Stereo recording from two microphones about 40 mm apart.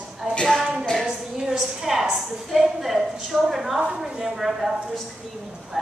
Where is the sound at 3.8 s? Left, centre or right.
Right.